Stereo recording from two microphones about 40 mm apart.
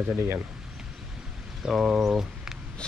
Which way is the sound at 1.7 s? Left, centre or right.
Centre.